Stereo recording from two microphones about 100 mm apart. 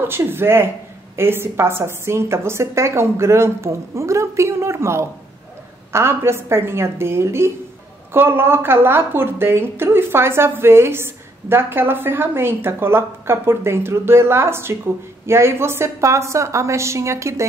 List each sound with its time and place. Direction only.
0.0 s a woman's voice: 25° right (ahead or behind)